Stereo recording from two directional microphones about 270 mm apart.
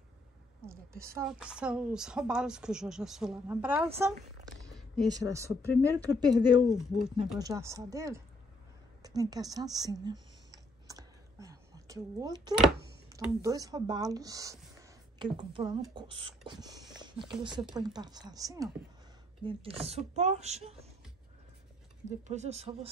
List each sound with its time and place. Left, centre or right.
0.7 s a woman's voice: centre
4.6 s a sound: centre
5.0 s speech: centre
10.9 s a sound: centre
13.1 s speech: centre
22.3 s speech: right